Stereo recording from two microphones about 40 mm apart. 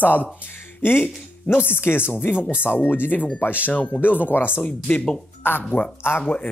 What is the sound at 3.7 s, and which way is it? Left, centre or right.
Speech, left.